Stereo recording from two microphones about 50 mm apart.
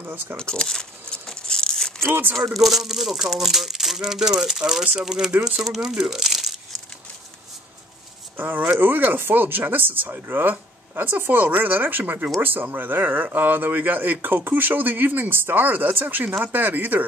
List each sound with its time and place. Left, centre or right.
0.0 s speech: right
0.4 s speech: centre
1.1 s a sound: centre
2.5 s speech: centre
8.4 s speech: right
15.6 s speech: right